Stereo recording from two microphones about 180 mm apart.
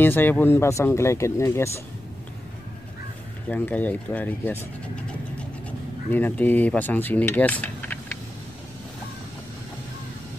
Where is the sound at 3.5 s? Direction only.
10° left (ahead or behind).